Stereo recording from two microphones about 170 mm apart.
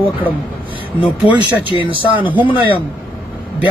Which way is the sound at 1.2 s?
10° right (ahead or behind).